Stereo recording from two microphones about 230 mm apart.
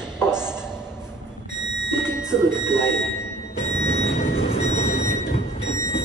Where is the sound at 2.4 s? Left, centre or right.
Centre.